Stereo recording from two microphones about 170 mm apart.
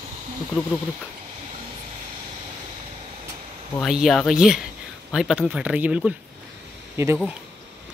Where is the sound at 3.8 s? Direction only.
Centre (ahead or behind).